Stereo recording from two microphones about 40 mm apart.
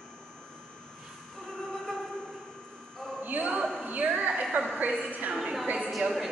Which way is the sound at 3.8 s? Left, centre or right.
Right.